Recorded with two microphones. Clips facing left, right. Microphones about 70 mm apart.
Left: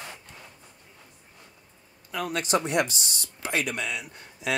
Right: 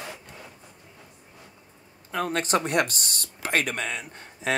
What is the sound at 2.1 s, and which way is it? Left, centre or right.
Speech, right.